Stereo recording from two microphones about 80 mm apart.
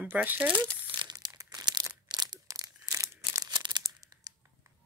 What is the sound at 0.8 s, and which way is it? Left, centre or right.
Crumpling, right.